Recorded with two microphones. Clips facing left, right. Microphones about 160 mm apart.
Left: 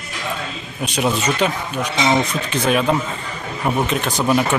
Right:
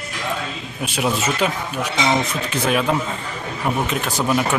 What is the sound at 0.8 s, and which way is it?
Speech, 5° right (ahead or behind).